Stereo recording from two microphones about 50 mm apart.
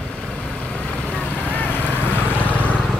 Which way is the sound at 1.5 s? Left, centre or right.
Left.